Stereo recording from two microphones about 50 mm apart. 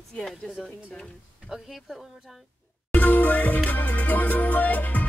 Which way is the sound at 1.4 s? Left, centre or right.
Centre.